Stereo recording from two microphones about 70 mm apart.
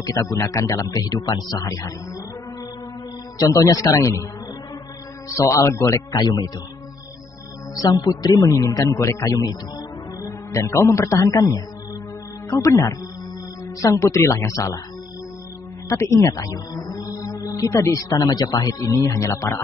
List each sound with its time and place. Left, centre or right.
0.0 s a man's voice: left
1.0 s a man's voice: left
3.3 s a man's voice: left
5.5 s a man's voice: left
6.2 s a man's voice: left
7.7 s a man's voice: left
15.9 s a man's voice: left